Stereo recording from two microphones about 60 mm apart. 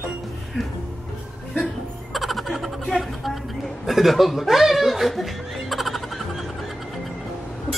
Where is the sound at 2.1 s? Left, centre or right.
Centre.